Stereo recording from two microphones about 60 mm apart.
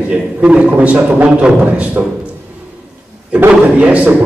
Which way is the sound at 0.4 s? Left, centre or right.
Right.